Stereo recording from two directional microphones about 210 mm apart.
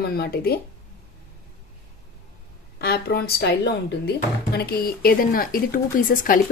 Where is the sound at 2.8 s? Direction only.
45° left (ahead or behind).